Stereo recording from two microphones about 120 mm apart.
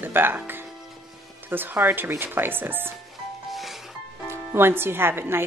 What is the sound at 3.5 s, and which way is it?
Music, centre (ahead or behind).